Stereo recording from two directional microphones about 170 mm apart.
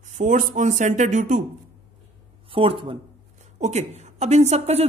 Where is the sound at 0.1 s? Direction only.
45° right (ahead or behind).